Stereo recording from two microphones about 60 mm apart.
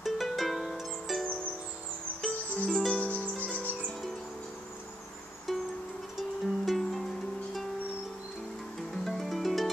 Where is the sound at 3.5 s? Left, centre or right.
Left.